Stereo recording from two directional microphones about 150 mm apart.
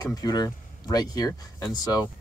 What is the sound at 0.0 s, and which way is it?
Speech, 25° left (ahead or behind).